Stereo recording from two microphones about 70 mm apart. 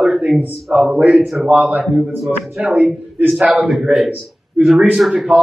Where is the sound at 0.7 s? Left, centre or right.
Centre.